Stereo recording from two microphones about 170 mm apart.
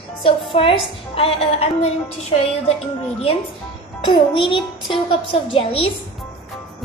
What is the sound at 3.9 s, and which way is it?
A child's voice, 30° left (ahead or behind).